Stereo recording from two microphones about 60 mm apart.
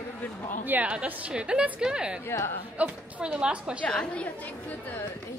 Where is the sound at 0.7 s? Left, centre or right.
Right.